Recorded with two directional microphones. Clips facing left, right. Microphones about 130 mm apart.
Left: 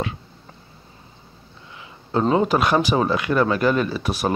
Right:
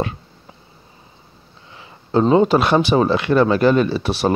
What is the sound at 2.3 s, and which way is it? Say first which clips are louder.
Speech: right 4 dB; 25° right (ahead or behind).